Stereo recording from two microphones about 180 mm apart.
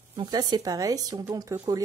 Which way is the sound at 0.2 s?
25° right (ahead or behind).